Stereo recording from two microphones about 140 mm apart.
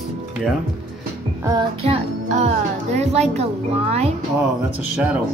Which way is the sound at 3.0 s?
50° right (ahead or behind).